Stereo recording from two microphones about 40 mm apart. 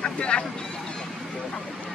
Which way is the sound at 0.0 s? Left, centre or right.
Left.